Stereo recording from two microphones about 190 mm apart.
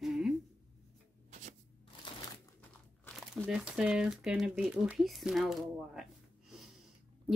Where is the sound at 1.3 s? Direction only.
40° right (ahead or behind).